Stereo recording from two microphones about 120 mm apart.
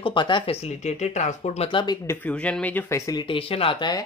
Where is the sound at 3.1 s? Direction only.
35° left (ahead or behind).